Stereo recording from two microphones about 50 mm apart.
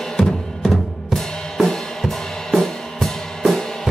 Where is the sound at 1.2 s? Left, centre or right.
Centre.